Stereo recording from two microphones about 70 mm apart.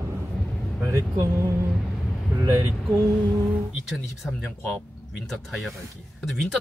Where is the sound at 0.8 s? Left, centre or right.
Right.